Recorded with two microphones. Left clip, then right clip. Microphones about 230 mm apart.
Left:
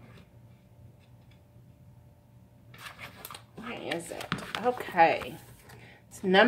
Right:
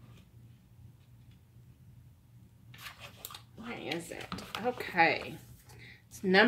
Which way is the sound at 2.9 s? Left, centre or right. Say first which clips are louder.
Left 4 dB; centre.